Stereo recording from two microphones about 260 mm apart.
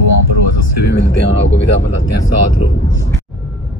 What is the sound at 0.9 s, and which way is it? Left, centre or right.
Speech, left.